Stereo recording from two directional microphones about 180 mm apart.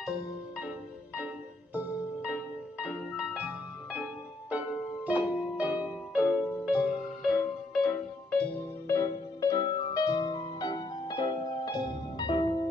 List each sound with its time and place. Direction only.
0.0 s music: 5° right (ahead or behind); by 12.4 s 25° left (ahead or behind)